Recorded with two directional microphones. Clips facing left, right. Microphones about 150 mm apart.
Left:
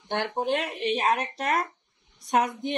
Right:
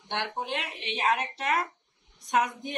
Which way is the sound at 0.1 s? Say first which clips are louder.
Left 6 dB; 40° left (ahead or behind).